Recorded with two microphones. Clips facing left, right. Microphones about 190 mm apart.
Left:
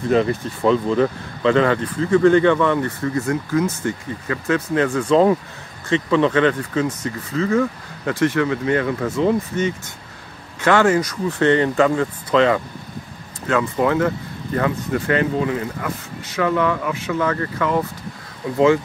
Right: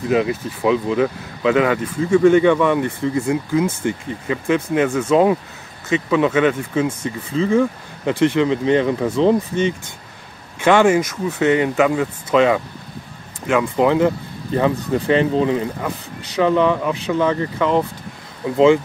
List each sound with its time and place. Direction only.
0.1 s speech: 5° right (ahead or behind); by 9.8 s 25° right (ahead or behind)
10.6 s speech: 15° right (ahead or behind)